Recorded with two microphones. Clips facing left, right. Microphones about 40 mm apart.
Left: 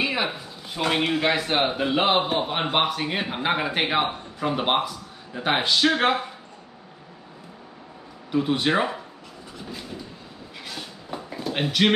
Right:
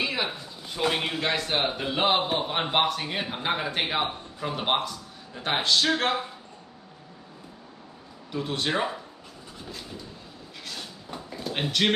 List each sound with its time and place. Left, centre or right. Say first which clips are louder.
0.0 s speech: left 3 dB; centre
8.3 s speech: left 6 dB; centre
10.6 s a sound: left 2 dB; centre